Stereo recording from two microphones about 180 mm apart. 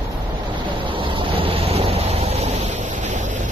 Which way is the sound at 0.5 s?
25° right (ahead or behind).